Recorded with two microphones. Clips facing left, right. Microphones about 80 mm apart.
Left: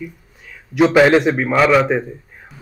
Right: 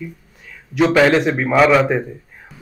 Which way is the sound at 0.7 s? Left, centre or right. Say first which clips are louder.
Left 2 dB; centre.